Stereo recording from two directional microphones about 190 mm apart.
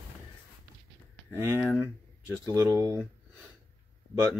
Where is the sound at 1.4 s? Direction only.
10° right (ahead or behind).